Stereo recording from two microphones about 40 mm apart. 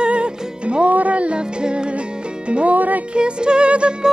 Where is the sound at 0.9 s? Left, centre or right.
Right.